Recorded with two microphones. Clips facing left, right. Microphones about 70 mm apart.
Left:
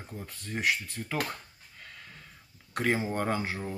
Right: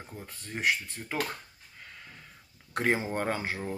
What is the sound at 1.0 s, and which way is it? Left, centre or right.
Speech, right.